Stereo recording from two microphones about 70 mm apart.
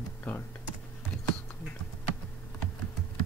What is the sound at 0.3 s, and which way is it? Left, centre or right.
Computer keyboard, left.